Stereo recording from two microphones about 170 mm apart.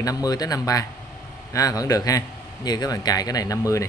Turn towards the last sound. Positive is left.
turn(degrees=20)  # may be behind; listen again after turning